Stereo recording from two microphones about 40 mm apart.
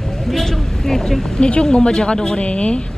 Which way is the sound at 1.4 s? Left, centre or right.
Left.